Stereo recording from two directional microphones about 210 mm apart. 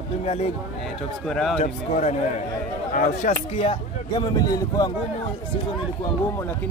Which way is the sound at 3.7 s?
20° left (ahead or behind).